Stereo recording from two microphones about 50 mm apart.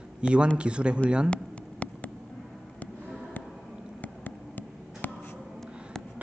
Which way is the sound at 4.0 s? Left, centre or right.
Left.